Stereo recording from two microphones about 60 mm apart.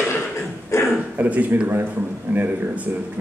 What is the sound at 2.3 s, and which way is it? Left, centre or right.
Speech, right.